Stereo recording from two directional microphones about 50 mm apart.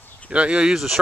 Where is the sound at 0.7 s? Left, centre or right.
Centre.